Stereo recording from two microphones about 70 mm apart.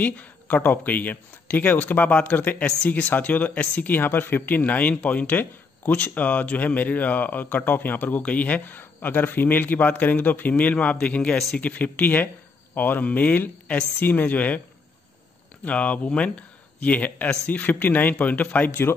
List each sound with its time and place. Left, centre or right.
0.0 s speech: left
15.6 s speech: centre